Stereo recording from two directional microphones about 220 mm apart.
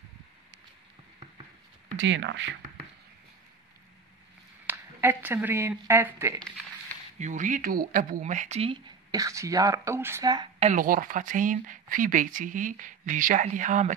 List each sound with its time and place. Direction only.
2.0 s speech: 55° right (ahead or behind)
4.6 s speech: 10° right (ahead or behind)
7.2 s speech: 35° right (ahead or behind)
10.7 s speech: 40° right (ahead or behind)